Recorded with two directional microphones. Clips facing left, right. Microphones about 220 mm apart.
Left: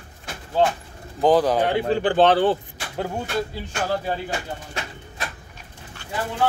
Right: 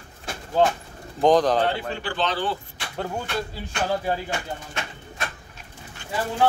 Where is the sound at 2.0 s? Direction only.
55° left (ahead or behind).